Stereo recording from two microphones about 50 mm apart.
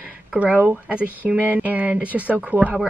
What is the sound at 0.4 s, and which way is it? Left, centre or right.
A woman's voice, right.